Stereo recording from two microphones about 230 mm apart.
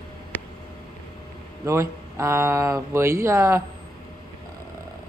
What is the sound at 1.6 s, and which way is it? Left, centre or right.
Speech, centre.